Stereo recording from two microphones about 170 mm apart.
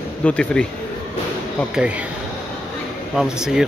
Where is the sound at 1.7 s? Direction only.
5° right (ahead or behind).